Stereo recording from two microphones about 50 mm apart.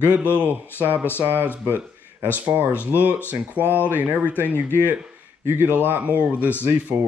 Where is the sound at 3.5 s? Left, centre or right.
Left.